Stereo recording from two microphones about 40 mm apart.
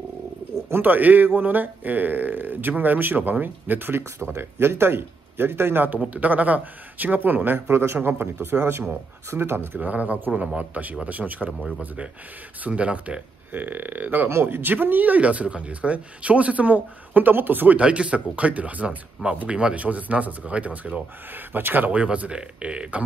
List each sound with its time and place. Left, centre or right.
0.8 s speech: right
3.9 s speech: right
5.9 s speech: right
7.2 s a man's voice: right
9.8 s speech: right
13.5 s speech: right
14.3 s speech: right
17.7 s speech: right
21.5 s speech: right
21.9 s speech: right